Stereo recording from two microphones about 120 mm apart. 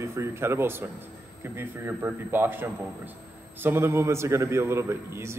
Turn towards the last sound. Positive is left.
turn(degrees=-20)  # may be behind; listen again after turning